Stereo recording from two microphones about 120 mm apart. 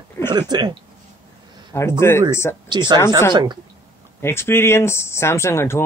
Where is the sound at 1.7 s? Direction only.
20° left (ahead or behind).